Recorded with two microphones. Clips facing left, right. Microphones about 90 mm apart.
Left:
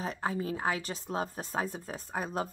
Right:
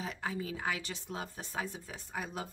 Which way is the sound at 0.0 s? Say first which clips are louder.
Left 5 dB; 35° left (ahead or behind).